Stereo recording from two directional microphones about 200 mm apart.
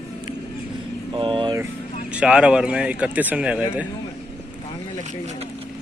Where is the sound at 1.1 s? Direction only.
25° right (ahead or behind).